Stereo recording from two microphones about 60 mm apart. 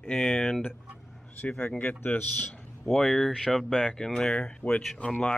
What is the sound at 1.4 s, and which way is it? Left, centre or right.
Speech, left.